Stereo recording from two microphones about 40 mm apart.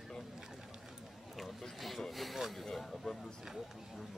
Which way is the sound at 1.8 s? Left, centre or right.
Centre.